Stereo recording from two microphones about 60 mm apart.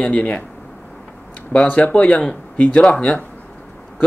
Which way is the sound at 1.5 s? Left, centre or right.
Left.